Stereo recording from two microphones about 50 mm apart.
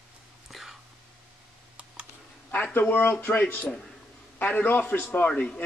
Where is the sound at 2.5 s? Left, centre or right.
Left.